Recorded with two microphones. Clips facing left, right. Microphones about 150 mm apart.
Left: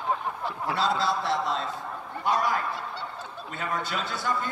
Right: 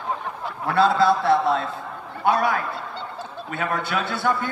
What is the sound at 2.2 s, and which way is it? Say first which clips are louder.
A man's voice: right 5 dB; 65° right (ahead or behind).